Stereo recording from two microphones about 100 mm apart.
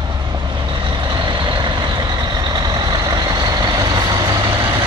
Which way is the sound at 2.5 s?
40° right (ahead or behind).